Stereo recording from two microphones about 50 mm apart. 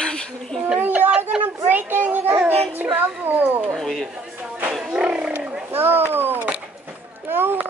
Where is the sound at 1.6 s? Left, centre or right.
Right.